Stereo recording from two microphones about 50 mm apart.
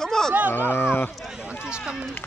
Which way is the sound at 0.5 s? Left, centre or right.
Left.